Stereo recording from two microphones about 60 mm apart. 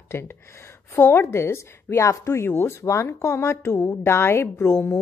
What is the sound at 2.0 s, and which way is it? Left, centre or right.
Speech, left.